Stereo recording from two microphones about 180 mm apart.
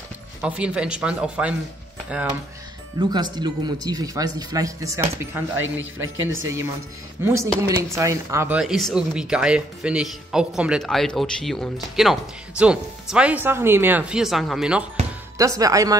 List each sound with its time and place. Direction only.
0.4 s speech: 5° right (ahead or behind)
3.0 s speech: 25° right (ahead or behind)
5.6 s a man's voice: 90° right
6.3 s speech: 15° right (ahead or behind)
8.5 s speech: centre (ahead or behind)
15.3 s speech: 20° right (ahead or behind)